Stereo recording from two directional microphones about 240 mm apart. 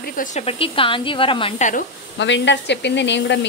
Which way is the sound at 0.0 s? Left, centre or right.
Left.